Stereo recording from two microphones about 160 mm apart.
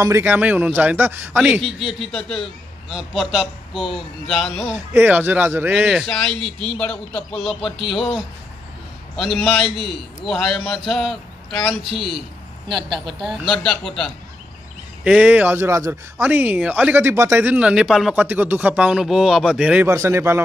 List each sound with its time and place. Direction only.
0.0 s speech: 15° right (ahead or behind); by 4.7 s 5° left (ahead or behind)
4.9 s speech: 10° right (ahead or behind)
12.6 s speech: 30° right (ahead or behind)
13.2 s speech: centre (ahead or behind)
15.0 s speech: 10° right (ahead or behind)
19.9 s speech: 15° right (ahead or behind)